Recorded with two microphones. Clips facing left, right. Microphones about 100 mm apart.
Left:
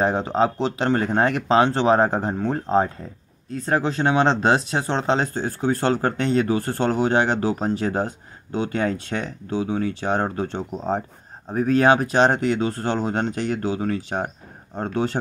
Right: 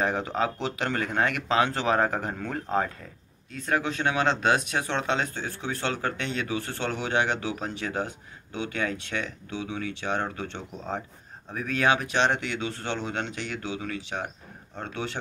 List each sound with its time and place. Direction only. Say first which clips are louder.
0.0 s speech: left 6 dB; 30° left (ahead or behind)